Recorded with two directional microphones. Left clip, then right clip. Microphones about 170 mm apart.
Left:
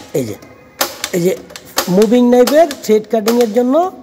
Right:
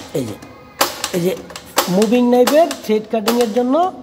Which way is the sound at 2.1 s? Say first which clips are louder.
Left 2 dB; 55° left (ahead or behind).